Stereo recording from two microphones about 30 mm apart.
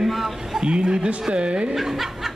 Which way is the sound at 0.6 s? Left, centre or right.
Right.